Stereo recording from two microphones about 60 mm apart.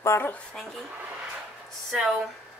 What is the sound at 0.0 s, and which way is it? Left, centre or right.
Speech, left.